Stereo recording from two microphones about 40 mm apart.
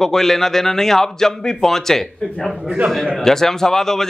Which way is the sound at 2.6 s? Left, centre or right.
Centre.